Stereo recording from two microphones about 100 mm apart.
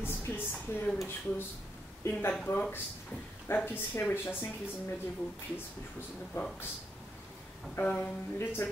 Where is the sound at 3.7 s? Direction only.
20° left (ahead or behind).